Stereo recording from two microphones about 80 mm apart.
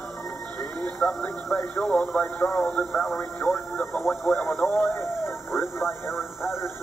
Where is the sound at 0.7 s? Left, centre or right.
Centre.